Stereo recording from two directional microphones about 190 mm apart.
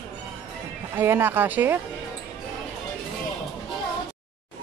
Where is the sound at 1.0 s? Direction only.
10° right (ahead or behind).